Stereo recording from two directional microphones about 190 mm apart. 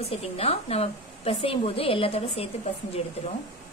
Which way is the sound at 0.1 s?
35° left (ahead or behind).